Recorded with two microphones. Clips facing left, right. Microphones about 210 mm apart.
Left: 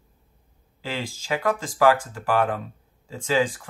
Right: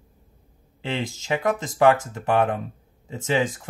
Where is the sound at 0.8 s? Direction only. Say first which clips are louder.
Right 3 dB; 20° right (ahead or behind).